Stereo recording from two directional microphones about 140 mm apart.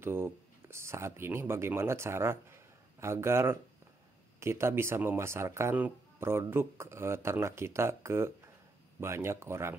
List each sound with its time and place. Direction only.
0.0 s speech: 15° right (ahead or behind)